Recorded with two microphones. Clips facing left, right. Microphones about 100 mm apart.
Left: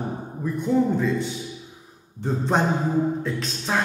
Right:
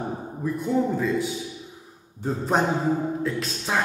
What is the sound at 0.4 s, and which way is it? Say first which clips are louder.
A man's voice: left 2 dB; centre (ahead or behind).